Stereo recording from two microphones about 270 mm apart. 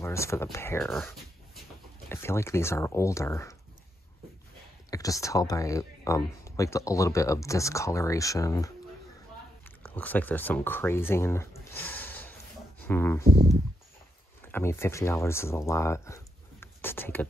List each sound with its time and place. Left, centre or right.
0.0 s speech: centre
4.9 s speech: centre
9.9 s speech: centre
13.2 s speech: right
14.5 s speech: centre